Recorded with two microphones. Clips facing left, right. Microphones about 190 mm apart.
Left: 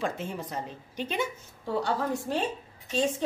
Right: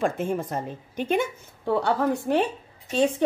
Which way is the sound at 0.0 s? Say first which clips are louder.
Right 7 dB; 50° right (ahead or behind).